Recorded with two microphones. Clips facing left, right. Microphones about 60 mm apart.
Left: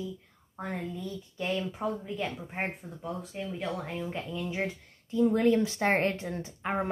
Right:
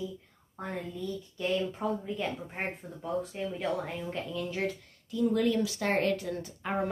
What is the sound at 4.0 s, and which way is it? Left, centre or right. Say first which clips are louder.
Speech: even; left.